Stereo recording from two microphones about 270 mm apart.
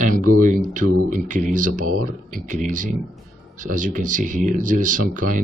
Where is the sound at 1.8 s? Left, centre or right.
Right.